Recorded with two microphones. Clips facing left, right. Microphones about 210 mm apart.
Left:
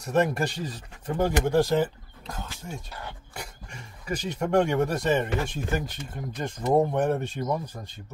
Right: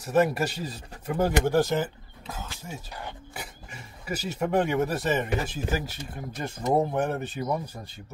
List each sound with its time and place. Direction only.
0.0 s speech: 5° right (ahead or behind)
2.9 s speech: 15° right (ahead or behind)
3.3 s speech: 5° right (ahead or behind)